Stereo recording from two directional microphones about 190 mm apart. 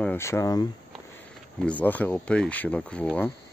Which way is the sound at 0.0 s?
10° left (ahead or behind).